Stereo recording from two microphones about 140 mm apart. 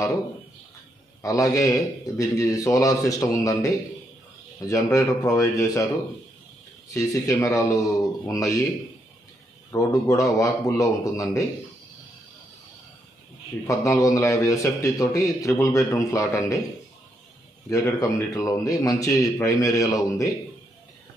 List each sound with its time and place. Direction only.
1.2 s a man's voice: 25° left (ahead or behind)
4.6 s a man's voice: 25° left (ahead or behind)
6.9 s a man's voice: 25° left (ahead or behind)
9.7 s a man's voice: 25° left (ahead or behind)
13.7 s a man's voice: 25° left (ahead or behind)
17.6 s a man's voice: 25° left (ahead or behind)